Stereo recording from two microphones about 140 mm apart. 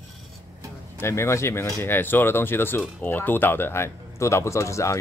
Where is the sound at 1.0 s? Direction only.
20° left (ahead or behind).